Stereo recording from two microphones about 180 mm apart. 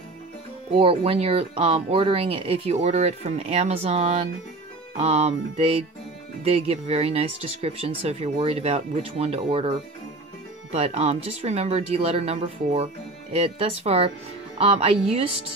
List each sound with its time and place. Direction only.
0.7 s speech: 30° right (ahead or behind)